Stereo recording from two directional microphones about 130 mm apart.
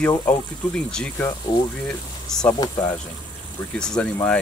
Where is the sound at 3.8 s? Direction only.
5° left (ahead or behind).